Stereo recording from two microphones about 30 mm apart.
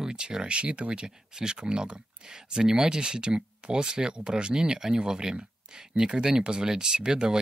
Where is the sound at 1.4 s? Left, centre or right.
Right.